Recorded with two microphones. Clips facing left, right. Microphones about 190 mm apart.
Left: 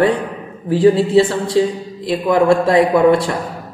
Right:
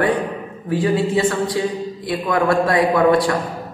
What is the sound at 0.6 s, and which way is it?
A man's voice, 30° left (ahead or behind).